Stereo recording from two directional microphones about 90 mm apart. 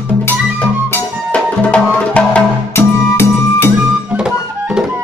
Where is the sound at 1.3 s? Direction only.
15° left (ahead or behind).